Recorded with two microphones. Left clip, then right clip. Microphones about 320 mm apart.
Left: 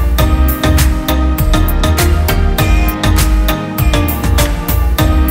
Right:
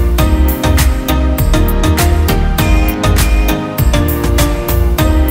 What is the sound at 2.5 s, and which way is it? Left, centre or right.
Music, centre.